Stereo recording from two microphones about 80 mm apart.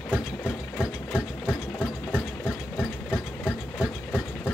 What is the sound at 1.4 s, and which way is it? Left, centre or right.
Engine, centre.